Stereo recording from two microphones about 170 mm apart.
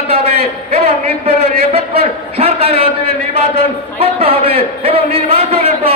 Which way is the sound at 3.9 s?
35° right (ahead or behind).